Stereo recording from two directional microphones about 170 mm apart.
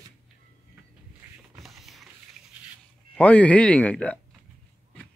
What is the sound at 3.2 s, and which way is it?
Speech, 10° left (ahead or behind).